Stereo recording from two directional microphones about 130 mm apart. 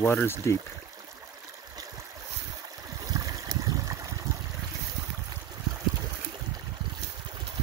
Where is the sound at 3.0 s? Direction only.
30° right (ahead or behind).